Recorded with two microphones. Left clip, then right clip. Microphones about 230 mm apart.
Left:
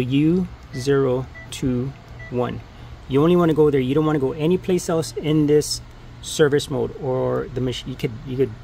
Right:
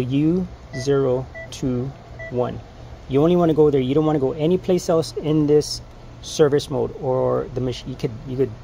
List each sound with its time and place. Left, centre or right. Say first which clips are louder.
0.0 s speech: left 1 dB; left
3.1 s speech: even; centre